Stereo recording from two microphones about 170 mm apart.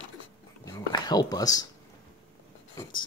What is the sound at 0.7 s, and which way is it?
Speech, 25° left (ahead or behind).